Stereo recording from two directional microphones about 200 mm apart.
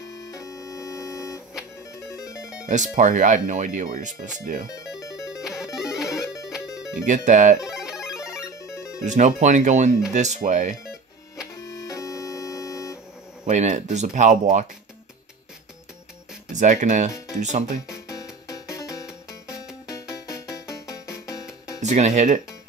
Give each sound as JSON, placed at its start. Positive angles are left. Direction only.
{"t": 0.2, "sound": "music", "side_deg": 15}
{"t": 2.7, "sound": "speech", "side_deg": -40}
{"t": 5.3, "sound": "music", "side_deg": -5}
{"t": 7.1, "sound": "speech", "side_deg": -40}
{"t": 7.6, "sound": "music", "side_deg": 0}
{"t": 8.5, "sound": "music", "side_deg": 15}
{"t": 9.0, "sound": "speech", "side_deg": -35}
{"t": 11.5, "sound": "music", "side_deg": 15}
{"t": 13.5, "sound": "speech", "side_deg": -35}
{"t": 16.5, "sound": "speech", "side_deg": -35}
{"t": 18.5, "sound": "music", "side_deg": 15}
{"t": 19.0, "sound": "music", "side_deg": -5}
{"t": 19.9, "sound": "music", "side_deg": 15}
{"t": 21.8, "sound": "speech", "side_deg": -35}